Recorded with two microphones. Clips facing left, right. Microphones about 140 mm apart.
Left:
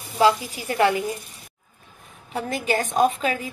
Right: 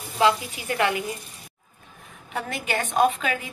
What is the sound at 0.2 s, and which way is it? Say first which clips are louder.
Speech: left 2 dB; 30° left (ahead or behind).